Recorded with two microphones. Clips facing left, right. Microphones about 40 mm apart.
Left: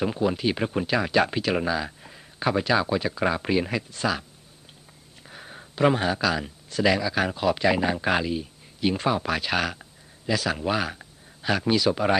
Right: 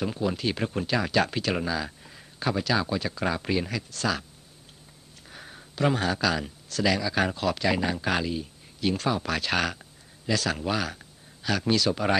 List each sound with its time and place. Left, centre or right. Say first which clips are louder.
0.0 s speech: left 4 dB; centre
5.2 s a sound: left 2 dB; centre
5.6 s speech: left 4 dB; centre